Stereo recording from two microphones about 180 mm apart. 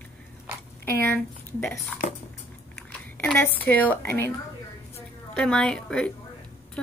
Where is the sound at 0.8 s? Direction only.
10° left (ahead or behind).